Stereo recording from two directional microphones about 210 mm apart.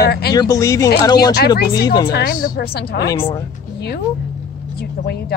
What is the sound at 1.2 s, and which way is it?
Speech, 50° left (ahead or behind).